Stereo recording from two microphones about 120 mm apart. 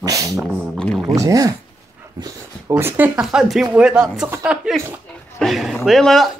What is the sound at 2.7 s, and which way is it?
Speech, 15° right (ahead or behind).